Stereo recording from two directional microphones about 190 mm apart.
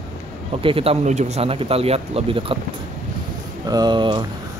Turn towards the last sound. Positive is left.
turn(degrees=-25)  # may be behind; listen again after turning